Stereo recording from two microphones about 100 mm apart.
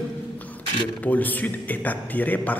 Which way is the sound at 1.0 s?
15° left (ahead or behind).